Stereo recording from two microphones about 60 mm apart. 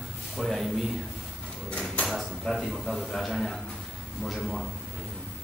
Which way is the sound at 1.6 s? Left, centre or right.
Centre.